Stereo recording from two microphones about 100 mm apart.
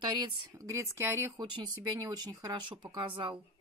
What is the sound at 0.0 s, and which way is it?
Speech, 50° right (ahead or behind).